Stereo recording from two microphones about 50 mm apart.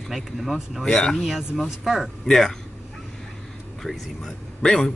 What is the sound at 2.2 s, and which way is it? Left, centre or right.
Speech, centre.